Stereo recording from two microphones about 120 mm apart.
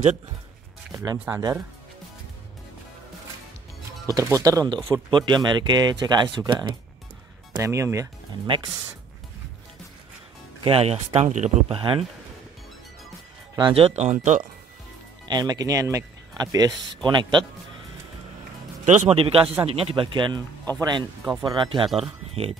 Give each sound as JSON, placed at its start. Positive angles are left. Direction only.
{"t": 0.9, "sound": "speech", "side_deg": -35}
{"t": 4.0, "sound": "speech", "side_deg": -30}
{"t": 7.5, "sound": "speech", "side_deg": -25}
{"t": 10.6, "sound": "speech", "side_deg": -55}
{"t": 11.1, "sound": "speech", "side_deg": -70}
{"t": 11.7, "sound": "speech", "side_deg": -45}
{"t": 13.7, "sound": "speech", "side_deg": -65}
{"t": 15.2, "sound": "speech", "side_deg": -35}
{"t": 18.9, "sound": "speech", "side_deg": -75}
{"t": 19.1, "sound": "speech", "side_deg": -50}
{"t": 21.8, "sound": "speech", "side_deg": -5}
{"t": 22.3, "sound": "speech", "side_deg": -55}